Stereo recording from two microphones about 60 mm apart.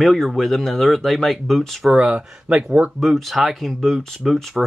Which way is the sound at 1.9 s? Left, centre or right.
Centre.